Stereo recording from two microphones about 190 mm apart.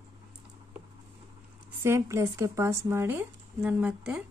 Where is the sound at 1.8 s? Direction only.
15° right (ahead or behind).